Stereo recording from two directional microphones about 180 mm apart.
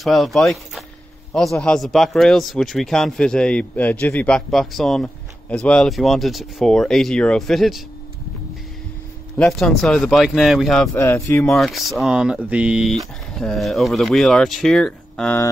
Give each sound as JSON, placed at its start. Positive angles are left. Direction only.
{"t": 0.0, "sound": "speech", "side_deg": 0}
{"t": 9.4, "sound": "speech", "side_deg": 0}
{"t": 10.9, "sound": "speech", "side_deg": 15}
{"t": 11.4, "sound": "speech", "side_deg": 0}